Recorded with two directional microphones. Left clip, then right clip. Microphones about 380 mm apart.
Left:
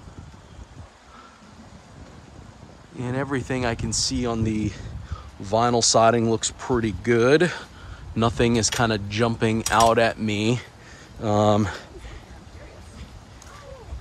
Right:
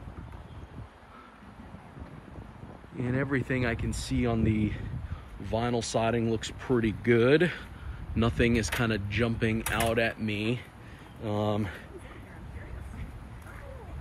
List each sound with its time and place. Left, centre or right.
3.0 s speech: centre
11.2 s speech: left